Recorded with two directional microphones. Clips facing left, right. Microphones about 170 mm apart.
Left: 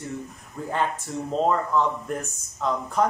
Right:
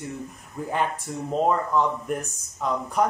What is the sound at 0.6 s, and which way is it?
Speech, 20° right (ahead or behind).